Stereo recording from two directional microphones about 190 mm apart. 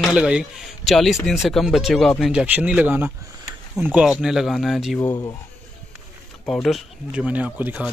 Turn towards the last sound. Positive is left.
turn(degrees=-5)  # may be behind; listen again after turning